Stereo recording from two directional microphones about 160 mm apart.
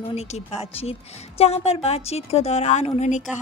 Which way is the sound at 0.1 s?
40° left (ahead or behind).